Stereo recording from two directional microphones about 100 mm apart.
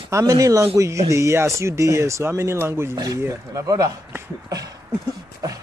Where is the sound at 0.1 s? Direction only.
35° right (ahead or behind).